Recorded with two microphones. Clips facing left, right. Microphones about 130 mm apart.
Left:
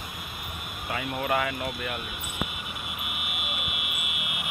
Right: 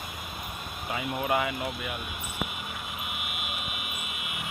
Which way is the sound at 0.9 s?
15° right (ahead or behind).